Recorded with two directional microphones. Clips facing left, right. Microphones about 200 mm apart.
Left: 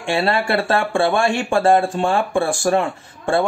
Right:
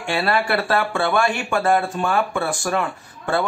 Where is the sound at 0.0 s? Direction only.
25° left (ahead or behind).